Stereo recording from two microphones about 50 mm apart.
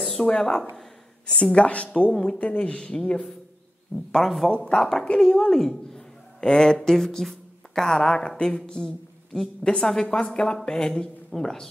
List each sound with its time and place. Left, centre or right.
0.0 s a sound: centre
0.3 s a woman's voice: centre
1.3 s a woman's voice: left
4.1 s a woman's voice: centre